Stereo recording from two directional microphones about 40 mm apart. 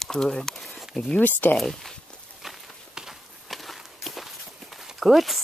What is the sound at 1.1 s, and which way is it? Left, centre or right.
Speech, left.